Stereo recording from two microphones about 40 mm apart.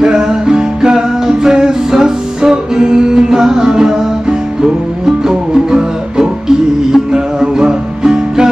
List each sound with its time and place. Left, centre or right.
0.0 s music: centre